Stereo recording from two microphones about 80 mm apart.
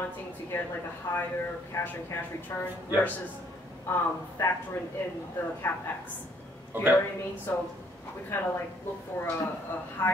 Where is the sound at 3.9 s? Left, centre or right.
Left.